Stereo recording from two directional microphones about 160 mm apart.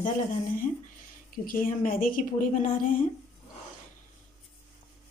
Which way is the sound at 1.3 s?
60° left (ahead or behind).